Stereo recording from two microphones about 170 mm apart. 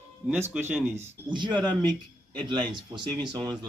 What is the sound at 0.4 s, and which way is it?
Speech, 10° right (ahead or behind).